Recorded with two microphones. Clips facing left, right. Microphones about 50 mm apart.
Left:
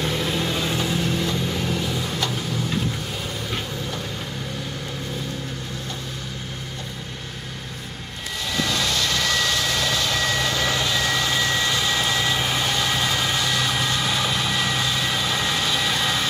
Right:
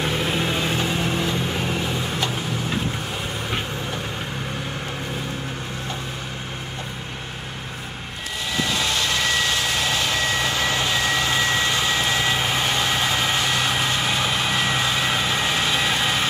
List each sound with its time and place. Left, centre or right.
0.0 s vehicle: right
8.5 s vehicle: centre